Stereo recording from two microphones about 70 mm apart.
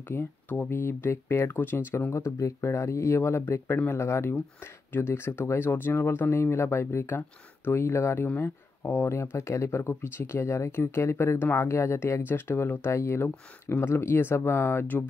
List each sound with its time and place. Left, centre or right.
0.1 s speech: left